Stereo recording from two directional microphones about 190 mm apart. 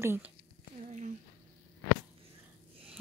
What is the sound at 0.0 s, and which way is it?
Speech, 10° right (ahead or behind).